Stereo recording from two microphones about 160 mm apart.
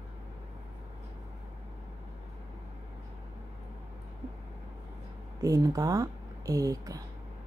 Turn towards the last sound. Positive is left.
turn(degrees=-20)  # may be behind; listen again after turning